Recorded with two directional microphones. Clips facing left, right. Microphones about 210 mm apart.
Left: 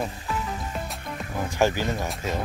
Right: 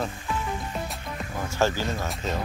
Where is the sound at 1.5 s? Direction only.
15° left (ahead or behind).